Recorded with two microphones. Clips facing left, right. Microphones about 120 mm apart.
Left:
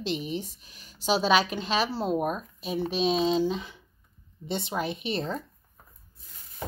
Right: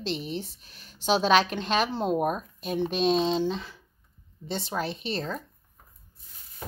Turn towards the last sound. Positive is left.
turn(degrees=20)  # may be behind; listen again after turning